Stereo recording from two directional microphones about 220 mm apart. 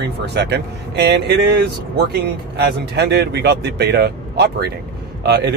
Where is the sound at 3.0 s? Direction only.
50° right (ahead or behind).